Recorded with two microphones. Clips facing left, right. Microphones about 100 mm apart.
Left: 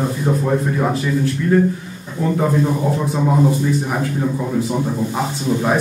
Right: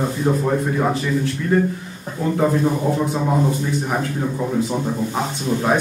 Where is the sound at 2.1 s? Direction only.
50° right (ahead or behind).